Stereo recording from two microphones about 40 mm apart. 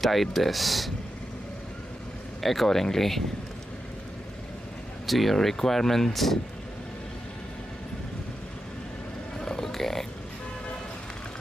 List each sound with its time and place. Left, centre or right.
0.0 s speech: centre
2.4 s speech: centre
5.0 s speech: centre
9.4 s vehicle: centre